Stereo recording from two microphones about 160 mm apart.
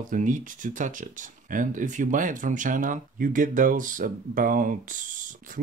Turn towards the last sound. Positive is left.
turn(degrees=-55)  # may be behind; listen again after turning